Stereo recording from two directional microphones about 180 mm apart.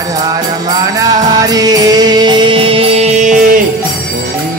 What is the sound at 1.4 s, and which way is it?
Music, 20° right (ahead or behind).